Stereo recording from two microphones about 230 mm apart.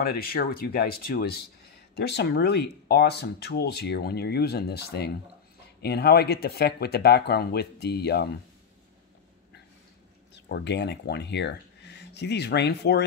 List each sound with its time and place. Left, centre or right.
0.0 s speech: left
10.3 s speech: left